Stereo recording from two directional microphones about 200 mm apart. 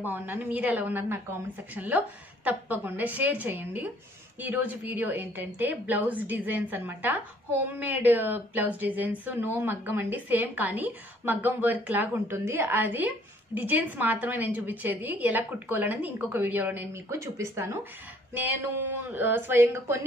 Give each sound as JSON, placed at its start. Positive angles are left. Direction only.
{"t": 0.0, "sound": "speech", "side_deg": -10}
{"t": 19.0, "sound": "speech", "side_deg": -10}